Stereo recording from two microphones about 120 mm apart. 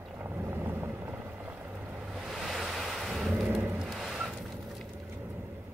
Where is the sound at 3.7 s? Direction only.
Centre (ahead or behind).